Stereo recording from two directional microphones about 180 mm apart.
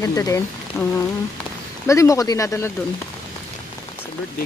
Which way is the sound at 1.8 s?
15° left (ahead or behind).